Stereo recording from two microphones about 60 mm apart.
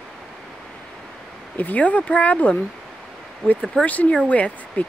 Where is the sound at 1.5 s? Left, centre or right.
Left.